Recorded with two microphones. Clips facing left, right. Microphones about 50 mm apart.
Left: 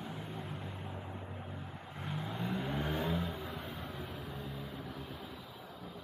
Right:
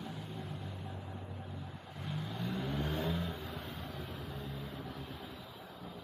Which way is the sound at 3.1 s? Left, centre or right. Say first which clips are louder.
Left 1 dB; centre.